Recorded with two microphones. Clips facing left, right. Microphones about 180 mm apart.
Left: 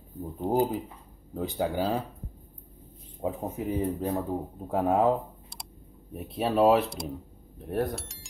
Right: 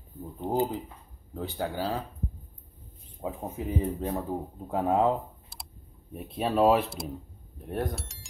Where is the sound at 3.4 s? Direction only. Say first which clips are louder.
Even; centre (ahead or behind).